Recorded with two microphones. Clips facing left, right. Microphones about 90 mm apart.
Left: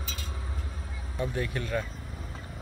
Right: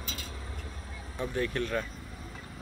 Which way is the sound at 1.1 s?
10° left (ahead or behind).